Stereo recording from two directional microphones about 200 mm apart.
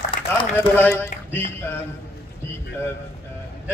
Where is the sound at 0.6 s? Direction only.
10° left (ahead or behind).